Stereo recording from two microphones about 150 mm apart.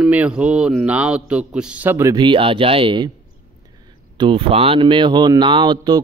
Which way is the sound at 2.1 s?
35° right (ahead or behind).